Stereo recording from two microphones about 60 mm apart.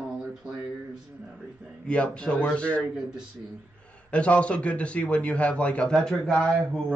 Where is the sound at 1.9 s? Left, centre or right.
Centre.